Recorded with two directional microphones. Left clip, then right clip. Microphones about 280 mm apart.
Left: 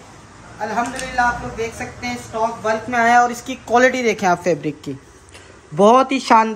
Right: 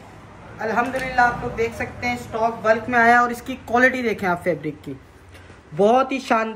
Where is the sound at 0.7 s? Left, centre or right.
Centre.